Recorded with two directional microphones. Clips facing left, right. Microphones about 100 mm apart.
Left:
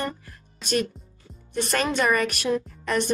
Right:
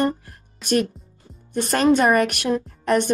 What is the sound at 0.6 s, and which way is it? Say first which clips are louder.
Speech: right 6 dB; centre (ahead or behind).